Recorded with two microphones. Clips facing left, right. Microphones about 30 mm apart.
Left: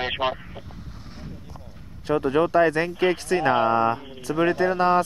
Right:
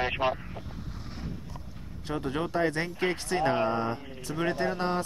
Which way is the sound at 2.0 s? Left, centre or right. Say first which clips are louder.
Left 10 dB; left.